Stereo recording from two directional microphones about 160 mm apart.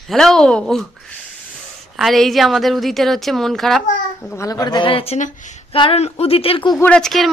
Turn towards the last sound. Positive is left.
turn(degrees=0)  # may be behind; listen again after turning